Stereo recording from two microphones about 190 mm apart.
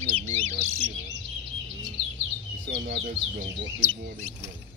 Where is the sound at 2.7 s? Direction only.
60° right (ahead or behind).